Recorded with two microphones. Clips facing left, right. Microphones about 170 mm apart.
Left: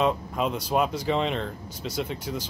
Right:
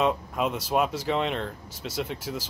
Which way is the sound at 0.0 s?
5° right (ahead or behind).